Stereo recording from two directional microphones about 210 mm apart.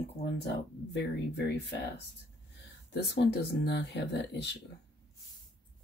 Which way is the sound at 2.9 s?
55° left (ahead or behind).